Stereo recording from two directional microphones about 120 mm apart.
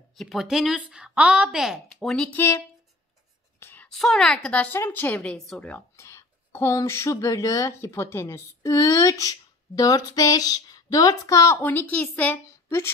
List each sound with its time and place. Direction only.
0.1 s a woman's voice: centre (ahead or behind)
1.9 s speech: 5° left (ahead or behind)
2.3 s speech: 20° left (ahead or behind)
3.5 s whispering: 20° left (ahead or behind)
3.9 s a woman's voice: 5° left (ahead or behind)
5.9 s speech: 25° left (ahead or behind)